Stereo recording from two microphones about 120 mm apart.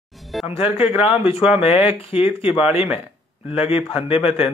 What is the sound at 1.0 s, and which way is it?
Speech, 55° left (ahead or behind).